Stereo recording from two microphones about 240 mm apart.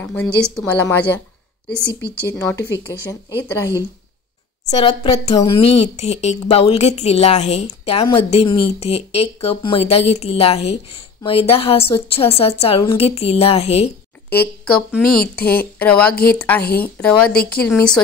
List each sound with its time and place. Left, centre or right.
0.0 s speech: centre
2.2 s speech: centre
4.6 s a woman's voice: left
14.6 s a woman's voice: centre
15.1 s speech: left
15.8 s a woman's voice: centre
16.1 s speech: left
16.3 s speech: centre
16.6 s speech: left
17.6 s a woman's voice: centre